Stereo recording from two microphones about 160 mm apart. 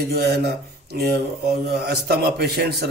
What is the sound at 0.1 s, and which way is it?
Speech, 90° right.